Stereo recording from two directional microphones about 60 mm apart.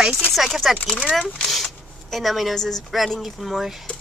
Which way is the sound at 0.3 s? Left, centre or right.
Centre.